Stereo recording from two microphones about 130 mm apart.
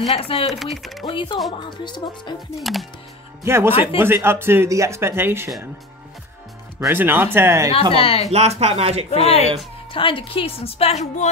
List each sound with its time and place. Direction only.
0.2 s a woman's voice: 45° left (ahead or behind)
0.5 s speech: centre (ahead or behind)
1.0 s a woman's voice: 35° left (ahead or behind)
2.6 s speech: centre (ahead or behind)
3.4 s speech: 20° right (ahead or behind)
6.9 s speech: 15° right (ahead or behind)
7.9 s a woman's voice: 50° left (ahead or behind)
8.3 s speech: 55° right (ahead or behind)
9.1 s a woman's voice: 50° left (ahead or behind)